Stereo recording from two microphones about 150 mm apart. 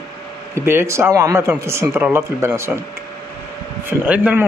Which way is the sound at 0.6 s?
15° right (ahead or behind).